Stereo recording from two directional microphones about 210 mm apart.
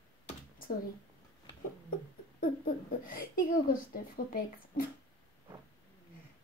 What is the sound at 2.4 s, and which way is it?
Speech, 40° left (ahead or behind).